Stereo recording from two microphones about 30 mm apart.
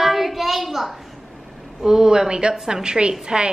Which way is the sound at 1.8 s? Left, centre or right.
Right.